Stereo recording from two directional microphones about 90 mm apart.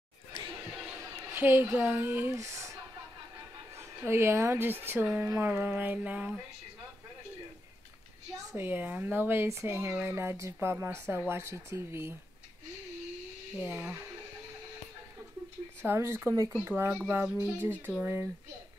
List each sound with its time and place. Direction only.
1.3 s a woman's voice: 25° right (ahead or behind)
8.5 s speech: 20° right (ahead or behind)
13.6 s speech: 20° right (ahead or behind)
15.8 s speech: 30° right (ahead or behind)